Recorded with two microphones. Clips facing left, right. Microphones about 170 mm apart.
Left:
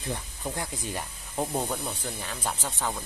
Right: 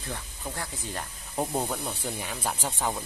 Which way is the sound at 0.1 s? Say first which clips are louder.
Left 3 dB; 15° left (ahead or behind).